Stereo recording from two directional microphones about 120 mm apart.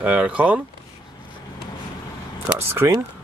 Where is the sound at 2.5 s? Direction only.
20° right (ahead or behind).